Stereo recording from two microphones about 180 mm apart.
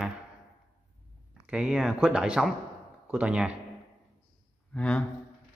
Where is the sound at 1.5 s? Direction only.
5° right (ahead or behind).